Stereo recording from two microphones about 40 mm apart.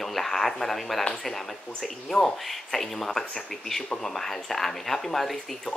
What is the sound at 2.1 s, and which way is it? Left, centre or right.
Speech, centre.